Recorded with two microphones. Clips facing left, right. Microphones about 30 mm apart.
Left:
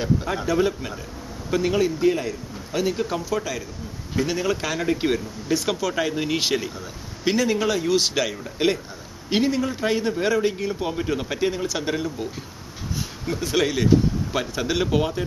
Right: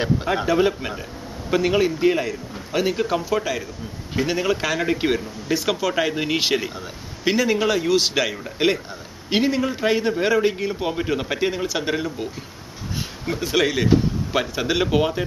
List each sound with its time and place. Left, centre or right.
0.0 s a man's voice: right